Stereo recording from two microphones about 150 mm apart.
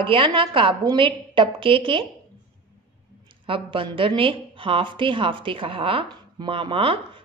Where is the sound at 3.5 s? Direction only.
35° right (ahead or behind).